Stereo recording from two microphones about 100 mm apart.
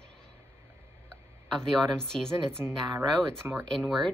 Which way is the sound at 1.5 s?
5° left (ahead or behind).